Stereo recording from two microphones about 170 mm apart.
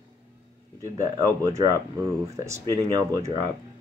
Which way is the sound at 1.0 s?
20° right (ahead or behind).